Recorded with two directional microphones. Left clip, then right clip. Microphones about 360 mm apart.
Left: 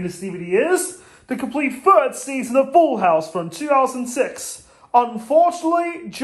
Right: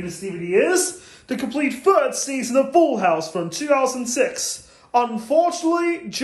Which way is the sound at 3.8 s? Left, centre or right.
Centre.